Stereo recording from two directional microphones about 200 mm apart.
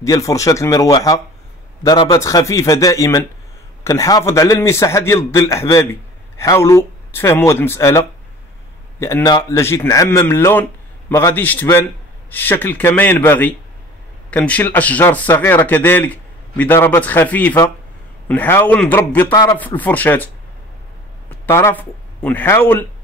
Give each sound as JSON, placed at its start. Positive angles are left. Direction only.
{"t": 0.0, "sound": "speech", "side_deg": 15}
{"t": 21.3, "sound": "speech", "side_deg": 15}